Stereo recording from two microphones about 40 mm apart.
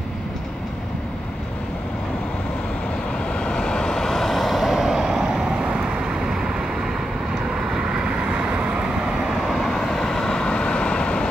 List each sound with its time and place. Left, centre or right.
3.3 s vehicle: left; by 6.4 s centre
8.2 s vehicle: right
9.3 s vehicle: centre
9.7 s vehicle: centre
10.5 s vehicle: left